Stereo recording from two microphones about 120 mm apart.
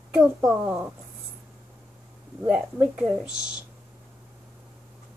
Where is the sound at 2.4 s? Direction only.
10° right (ahead or behind).